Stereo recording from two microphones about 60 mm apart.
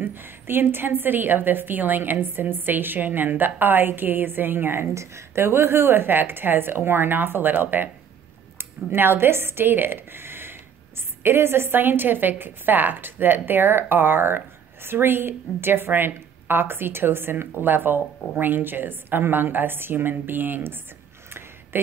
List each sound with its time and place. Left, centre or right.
0.0 s a woman's voice: right
4.9 s a woman's voice: right
21.3 s a sound: right